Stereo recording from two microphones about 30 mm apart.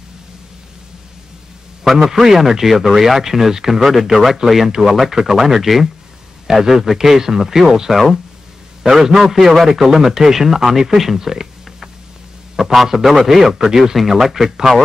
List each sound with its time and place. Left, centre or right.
2.2 s speech: centre
8.8 s a man's voice: centre
12.7 s speech: centre